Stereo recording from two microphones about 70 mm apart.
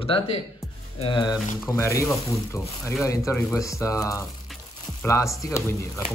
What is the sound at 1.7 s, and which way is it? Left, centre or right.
Speech, left.